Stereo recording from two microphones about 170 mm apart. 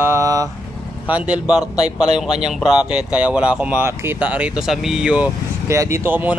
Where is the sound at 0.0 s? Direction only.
15° right (ahead or behind).